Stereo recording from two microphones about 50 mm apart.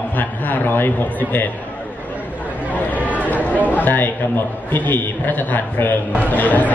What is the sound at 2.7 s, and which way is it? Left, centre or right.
Chatter, left.